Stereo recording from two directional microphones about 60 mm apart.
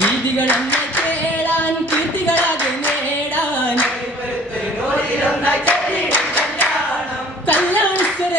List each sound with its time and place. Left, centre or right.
5.4 s choir: left
7.4 s clapping: left